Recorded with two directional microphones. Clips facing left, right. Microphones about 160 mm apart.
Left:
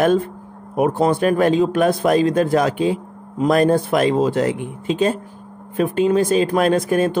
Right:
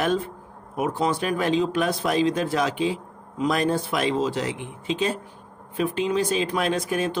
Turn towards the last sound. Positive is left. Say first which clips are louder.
# left 8 dB
turn(degrees=50)  # may be behind; listen again after turning